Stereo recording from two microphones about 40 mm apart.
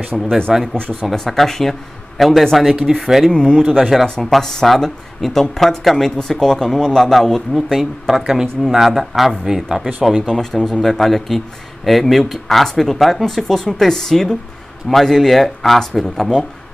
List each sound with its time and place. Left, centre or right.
0.1 s speech: centre
0.5 s speech: centre
1.0 s speech: centre
3.3 s speech: centre
3.5 s speech: centre
7.7 s speech: centre
10.2 s speech: centre